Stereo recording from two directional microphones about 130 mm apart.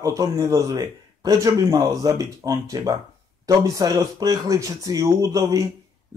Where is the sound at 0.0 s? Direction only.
25° right (ahead or behind).